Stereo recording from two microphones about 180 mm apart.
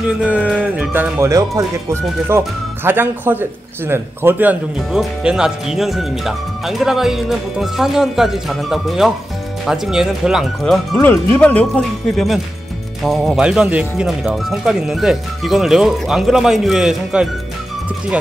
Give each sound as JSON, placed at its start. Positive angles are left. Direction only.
{"t": 0.2, "sound": "speech", "side_deg": -10}